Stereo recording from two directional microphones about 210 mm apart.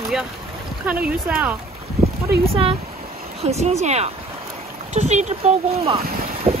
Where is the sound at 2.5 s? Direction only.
25° right (ahead or behind).